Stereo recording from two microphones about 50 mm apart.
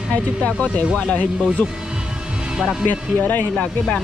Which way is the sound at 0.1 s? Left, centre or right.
Left.